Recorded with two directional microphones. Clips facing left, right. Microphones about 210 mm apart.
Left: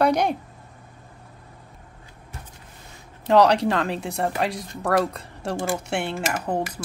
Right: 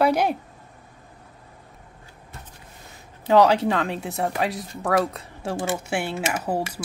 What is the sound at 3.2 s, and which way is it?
Speech, centre (ahead or behind).